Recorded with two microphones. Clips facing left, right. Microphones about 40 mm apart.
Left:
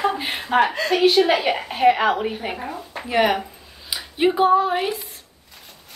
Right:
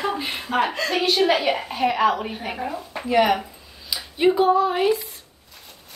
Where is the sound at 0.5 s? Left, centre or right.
Centre.